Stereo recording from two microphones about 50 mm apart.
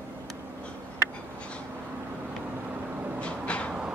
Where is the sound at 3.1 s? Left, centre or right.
Left.